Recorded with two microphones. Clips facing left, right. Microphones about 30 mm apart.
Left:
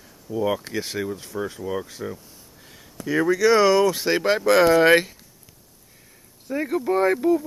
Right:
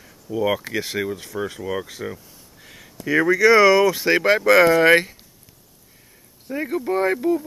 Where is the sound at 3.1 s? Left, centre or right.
Right.